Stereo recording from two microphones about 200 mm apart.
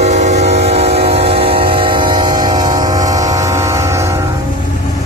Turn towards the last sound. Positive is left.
turn(degrees=-15)  # may be behind; listen again after turning